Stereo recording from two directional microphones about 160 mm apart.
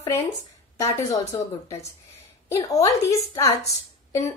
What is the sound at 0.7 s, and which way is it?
A woman's voice, 20° left (ahead or behind).